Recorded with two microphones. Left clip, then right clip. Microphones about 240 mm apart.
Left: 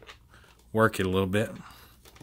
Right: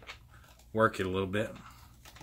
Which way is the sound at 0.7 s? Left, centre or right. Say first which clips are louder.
Left 4 dB; left.